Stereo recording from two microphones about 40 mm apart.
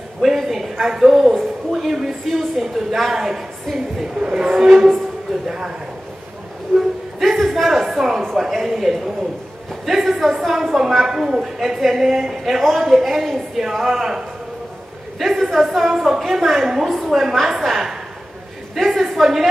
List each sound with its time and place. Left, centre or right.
0.2 s a sound: centre
2.3 s a woman's voice: centre
4.2 s a man's voice: right
6.7 s music: centre
8.4 s a woman's voice: centre